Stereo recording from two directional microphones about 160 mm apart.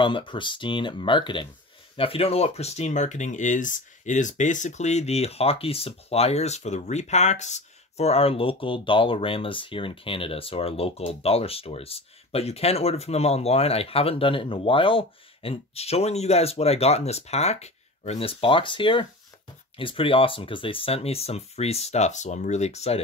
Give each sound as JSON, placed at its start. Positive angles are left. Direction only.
{"t": 0.0, "sound": "speech", "side_deg": 30}